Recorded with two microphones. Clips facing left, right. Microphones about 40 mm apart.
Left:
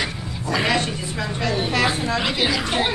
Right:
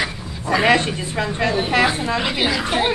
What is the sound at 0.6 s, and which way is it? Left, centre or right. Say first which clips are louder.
Speech: right 7 dB; right.